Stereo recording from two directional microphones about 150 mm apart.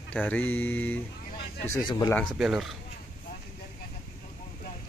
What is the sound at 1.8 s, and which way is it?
Speech, 25° left (ahead or behind).